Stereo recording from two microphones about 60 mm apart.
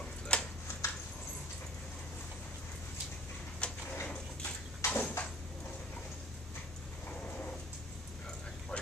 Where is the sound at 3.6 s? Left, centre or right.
Centre.